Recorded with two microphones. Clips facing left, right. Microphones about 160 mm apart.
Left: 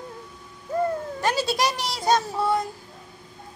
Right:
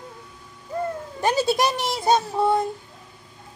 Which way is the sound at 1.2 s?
15° right (ahead or behind).